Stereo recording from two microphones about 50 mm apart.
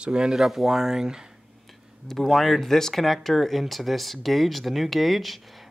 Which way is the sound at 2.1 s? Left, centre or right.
Centre.